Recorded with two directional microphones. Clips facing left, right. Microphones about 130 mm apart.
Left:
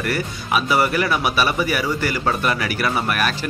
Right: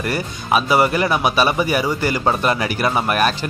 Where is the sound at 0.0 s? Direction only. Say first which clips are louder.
Right 1 dB; 25° right (ahead or behind).